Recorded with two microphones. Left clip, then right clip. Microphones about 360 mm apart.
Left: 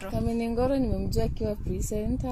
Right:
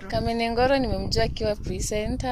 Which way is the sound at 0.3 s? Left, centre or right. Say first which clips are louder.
Right 6 dB; right.